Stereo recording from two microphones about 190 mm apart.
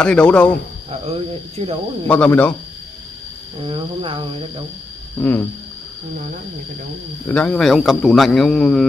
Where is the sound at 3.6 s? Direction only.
30° right (ahead or behind).